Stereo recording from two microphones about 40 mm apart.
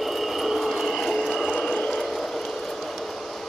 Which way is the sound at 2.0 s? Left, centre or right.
Centre.